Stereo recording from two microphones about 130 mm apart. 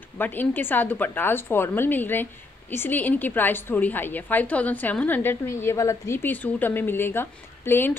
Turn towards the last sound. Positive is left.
turn(degrees=15)  # may be behind; listen again after turning